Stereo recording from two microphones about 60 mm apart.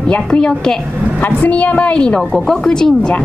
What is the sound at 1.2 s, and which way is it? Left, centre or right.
Speech, left.